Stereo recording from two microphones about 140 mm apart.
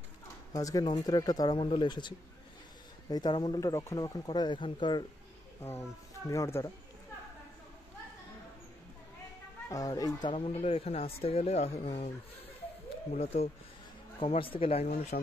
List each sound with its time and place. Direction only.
0.5 s speech: 25° left (ahead or behind)
1.6 s speech: 40° left (ahead or behind)
5.6 s speech: 15° left (ahead or behind)
9.7 s speech: 25° left (ahead or behind)
10.6 s speech: 45° left (ahead or behind)
13.2 s speech: 45° left (ahead or behind)